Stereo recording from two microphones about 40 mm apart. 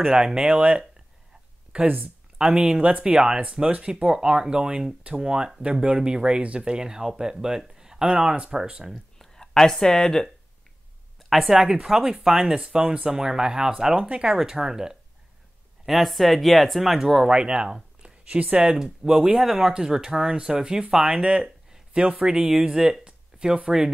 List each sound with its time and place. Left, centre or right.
0.0 s speech: centre
0.5 s speech: right
9.2 s a sound: centre
9.9 s speech: centre
11.1 s a sound: centre
11.5 s speech: centre
14.0 s speech: right
14.3 s speech: centre
15.8 s speech: centre
17.3 s speech: right
18.0 s speech: right
18.8 s speech: centre